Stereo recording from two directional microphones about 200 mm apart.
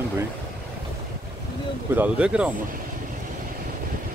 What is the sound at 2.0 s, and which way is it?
Speech, 5° right (ahead or behind).